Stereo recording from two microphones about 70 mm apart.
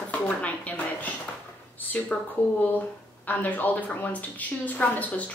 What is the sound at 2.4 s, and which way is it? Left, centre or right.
A woman's voice, left.